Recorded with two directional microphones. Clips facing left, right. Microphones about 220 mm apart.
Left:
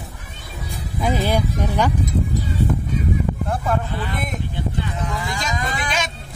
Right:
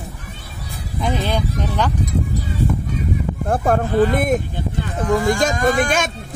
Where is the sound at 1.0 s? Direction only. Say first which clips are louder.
Left 1 dB; 10° left (ahead or behind).